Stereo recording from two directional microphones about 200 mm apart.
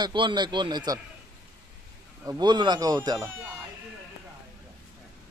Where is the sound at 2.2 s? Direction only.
20° right (ahead or behind).